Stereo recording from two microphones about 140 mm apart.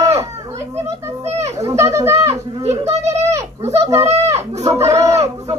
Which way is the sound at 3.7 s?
20° right (ahead or behind).